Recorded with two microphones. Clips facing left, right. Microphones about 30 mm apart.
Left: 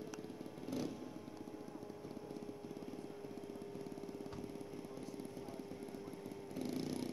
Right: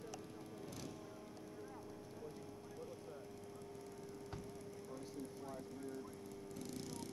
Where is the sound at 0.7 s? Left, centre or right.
Centre.